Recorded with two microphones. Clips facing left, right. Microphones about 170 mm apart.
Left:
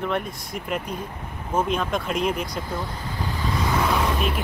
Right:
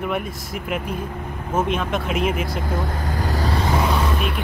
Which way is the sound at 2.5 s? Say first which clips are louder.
Right 4 dB; 50° right (ahead or behind).